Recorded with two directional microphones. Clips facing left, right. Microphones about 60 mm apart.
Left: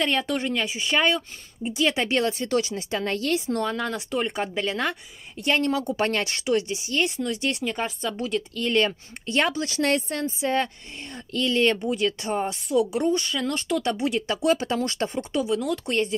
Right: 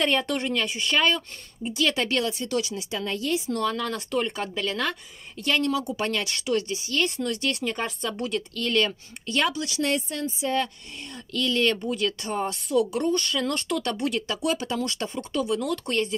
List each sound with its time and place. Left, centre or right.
0.0 s speech: centre; by 2.2 s left
2.2 s speech: left
3.5 s speech: left
7.6 s a woman's voice: centre
8.5 s speech: left
12.6 s a woman's voice: centre
14.2 s speech: left
15.4 s speech: centre
15.9 s speech: left